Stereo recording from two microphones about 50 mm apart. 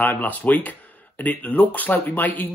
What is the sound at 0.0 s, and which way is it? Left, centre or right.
Speech, left.